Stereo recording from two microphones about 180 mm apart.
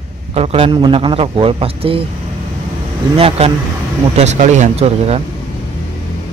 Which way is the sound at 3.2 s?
30° right (ahead or behind).